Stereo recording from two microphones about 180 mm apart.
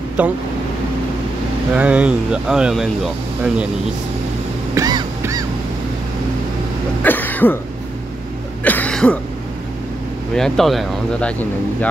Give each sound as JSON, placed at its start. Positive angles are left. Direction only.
{"t": 0.2, "sound": "speech", "side_deg": -10}
{"t": 1.8, "sound": "speech", "side_deg": -5}
{"t": 4.7, "sound": "a sound", "side_deg": -20}
{"t": 7.0, "sound": "cough", "side_deg": 10}
{"t": 8.6, "sound": "throat clearing", "side_deg": 10}
{"t": 10.3, "sound": "speech", "side_deg": 0}